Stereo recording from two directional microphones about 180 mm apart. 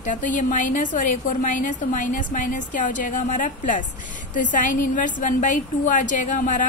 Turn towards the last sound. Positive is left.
turn(degrees=45)  # may be behind; listen again after turning